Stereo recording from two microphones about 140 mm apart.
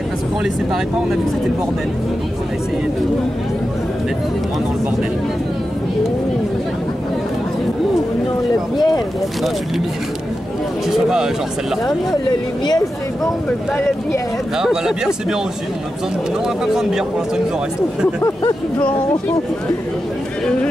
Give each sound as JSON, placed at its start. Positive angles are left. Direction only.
{"t": 8.7, "sound": "speech", "side_deg": 30}
{"t": 10.9, "sound": "speech", "side_deg": -5}
{"t": 12.6, "sound": "speech", "side_deg": 25}
{"t": 13.5, "sound": "speech", "side_deg": 10}
{"t": 14.6, "sound": "speech", "side_deg": -5}
{"t": 16.6, "sound": "speech", "side_deg": -5}